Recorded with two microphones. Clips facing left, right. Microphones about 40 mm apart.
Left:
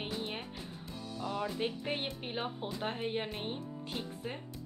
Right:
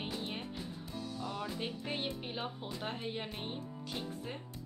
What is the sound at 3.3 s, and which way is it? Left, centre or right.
Music, centre.